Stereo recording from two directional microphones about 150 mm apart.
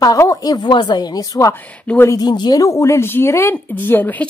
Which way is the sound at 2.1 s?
25° left (ahead or behind).